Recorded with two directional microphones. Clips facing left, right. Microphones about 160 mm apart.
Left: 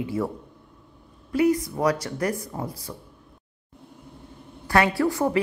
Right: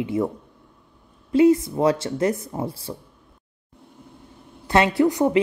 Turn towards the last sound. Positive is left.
turn(degrees=-20)  # may be behind; listen again after turning